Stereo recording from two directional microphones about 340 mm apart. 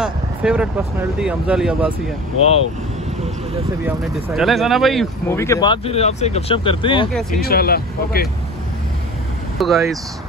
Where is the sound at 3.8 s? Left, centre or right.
Centre.